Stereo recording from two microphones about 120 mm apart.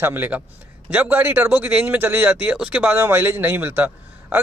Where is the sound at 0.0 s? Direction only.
15° right (ahead or behind).